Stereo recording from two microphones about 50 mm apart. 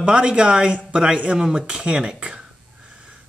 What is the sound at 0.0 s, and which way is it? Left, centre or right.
Speech, centre.